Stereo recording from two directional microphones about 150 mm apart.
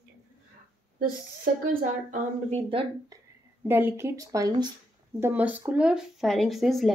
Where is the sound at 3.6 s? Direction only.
15° right (ahead or behind).